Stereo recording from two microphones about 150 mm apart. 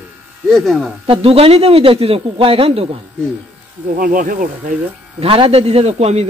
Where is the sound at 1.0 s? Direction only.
35° right (ahead or behind).